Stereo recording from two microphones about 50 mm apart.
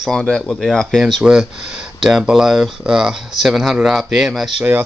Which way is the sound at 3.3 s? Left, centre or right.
Centre.